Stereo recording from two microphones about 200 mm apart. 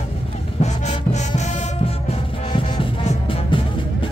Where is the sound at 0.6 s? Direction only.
35° left (ahead or behind).